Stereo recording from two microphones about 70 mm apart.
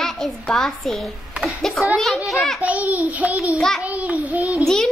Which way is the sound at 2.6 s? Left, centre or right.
Right.